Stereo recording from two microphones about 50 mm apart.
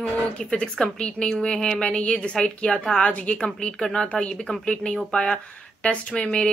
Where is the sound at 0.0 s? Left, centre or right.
Centre.